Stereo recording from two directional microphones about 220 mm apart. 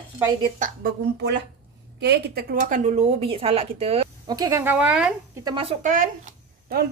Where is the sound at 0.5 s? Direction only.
40° right (ahead or behind).